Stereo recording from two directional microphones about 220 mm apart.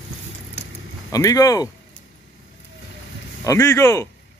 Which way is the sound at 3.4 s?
10° left (ahead or behind).